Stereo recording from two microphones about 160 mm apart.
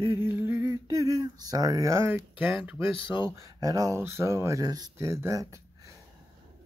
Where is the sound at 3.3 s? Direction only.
20° right (ahead or behind).